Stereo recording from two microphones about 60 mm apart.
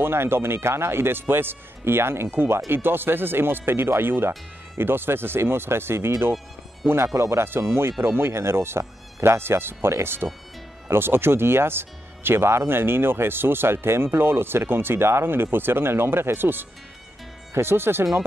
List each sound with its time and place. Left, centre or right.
0.0 s speech: right